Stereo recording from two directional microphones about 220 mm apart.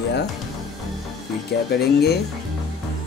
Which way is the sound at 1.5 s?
45° left (ahead or behind).